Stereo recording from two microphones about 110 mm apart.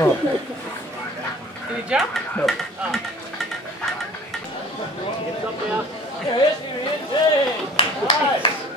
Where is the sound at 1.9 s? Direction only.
10° right (ahead or behind).